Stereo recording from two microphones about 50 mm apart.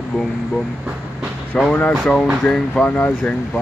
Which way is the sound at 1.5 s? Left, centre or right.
Left.